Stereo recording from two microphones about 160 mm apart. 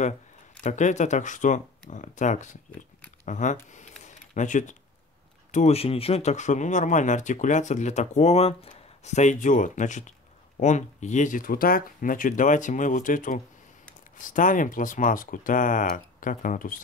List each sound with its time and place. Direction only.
0.7 s speech: 50° left (ahead or behind)
3.7 s a sound: 50° left (ahead or behind)
5.5 s speech: 45° left (ahead or behind)